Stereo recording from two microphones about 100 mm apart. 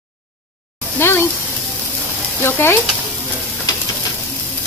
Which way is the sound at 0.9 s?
25° left (ahead or behind).